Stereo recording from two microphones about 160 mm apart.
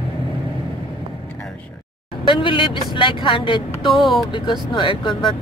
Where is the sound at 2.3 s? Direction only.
30° left (ahead or behind).